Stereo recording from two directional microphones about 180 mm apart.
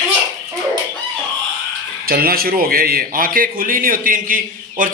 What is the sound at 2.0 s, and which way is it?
A man's voice, 55° right (ahead or behind).